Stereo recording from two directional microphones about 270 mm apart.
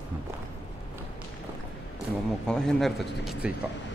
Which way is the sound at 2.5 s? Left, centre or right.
Centre.